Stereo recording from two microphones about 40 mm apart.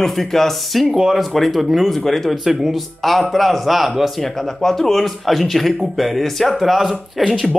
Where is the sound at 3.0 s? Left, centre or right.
Centre.